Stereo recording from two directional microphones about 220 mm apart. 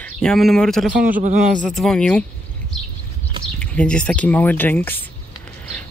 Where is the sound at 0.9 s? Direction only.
40° right (ahead or behind).